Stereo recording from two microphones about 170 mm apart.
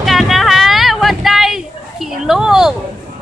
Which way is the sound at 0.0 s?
Centre (ahead or behind).